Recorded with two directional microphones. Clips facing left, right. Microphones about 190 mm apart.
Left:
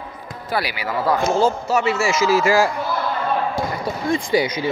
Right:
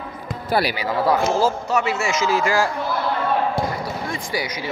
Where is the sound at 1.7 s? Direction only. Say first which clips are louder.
Left 2 dB; centre (ahead or behind).